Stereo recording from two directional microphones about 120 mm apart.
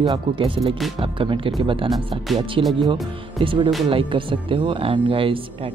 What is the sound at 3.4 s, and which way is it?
Speech, 45° right (ahead or behind).